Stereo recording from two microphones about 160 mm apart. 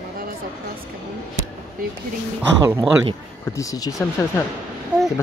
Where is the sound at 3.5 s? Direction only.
20° left (ahead or behind).